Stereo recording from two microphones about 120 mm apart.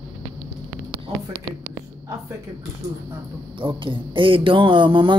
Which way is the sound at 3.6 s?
45° right (ahead or behind).